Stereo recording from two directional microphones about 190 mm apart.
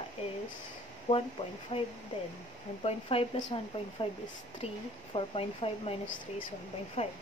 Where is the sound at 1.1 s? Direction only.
30° left (ahead or behind).